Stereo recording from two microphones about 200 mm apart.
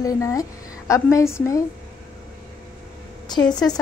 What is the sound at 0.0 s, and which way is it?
A woman's voice, 15° left (ahead or behind).